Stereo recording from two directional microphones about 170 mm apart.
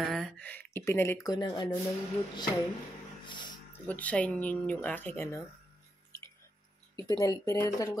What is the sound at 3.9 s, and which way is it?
Speech, 10° left (ahead or behind).